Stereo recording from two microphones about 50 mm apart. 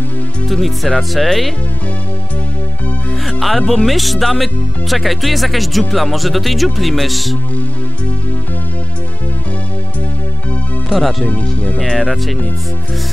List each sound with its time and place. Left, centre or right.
0.5 s speech: centre
3.3 s speech: centre
10.9 s speech: centre
11.2 s speech: left
11.9 s speech: centre